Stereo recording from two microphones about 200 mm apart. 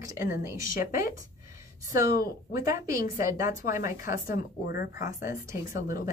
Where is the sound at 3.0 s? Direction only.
45° left (ahead or behind).